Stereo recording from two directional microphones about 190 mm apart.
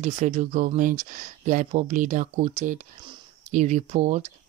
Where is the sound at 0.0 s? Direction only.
35° right (ahead or behind).